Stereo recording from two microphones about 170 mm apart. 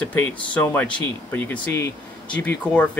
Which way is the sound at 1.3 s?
10° left (ahead or behind).